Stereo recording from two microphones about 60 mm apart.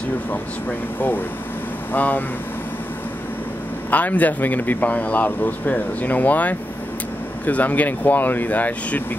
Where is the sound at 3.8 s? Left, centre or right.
Left.